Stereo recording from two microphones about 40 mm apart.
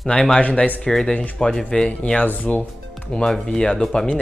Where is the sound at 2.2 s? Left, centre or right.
Left.